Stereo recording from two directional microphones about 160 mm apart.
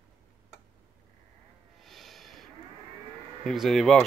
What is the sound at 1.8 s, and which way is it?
Snort, centre (ahead or behind).